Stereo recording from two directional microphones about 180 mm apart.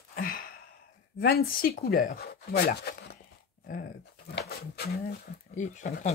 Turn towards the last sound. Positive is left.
turn(degrees=40)  # may be behind; listen again after turning